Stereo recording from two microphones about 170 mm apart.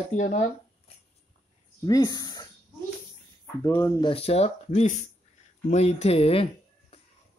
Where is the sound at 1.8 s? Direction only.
20° left (ahead or behind).